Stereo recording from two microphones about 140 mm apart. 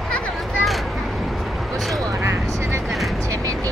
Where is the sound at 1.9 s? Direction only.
20° right (ahead or behind).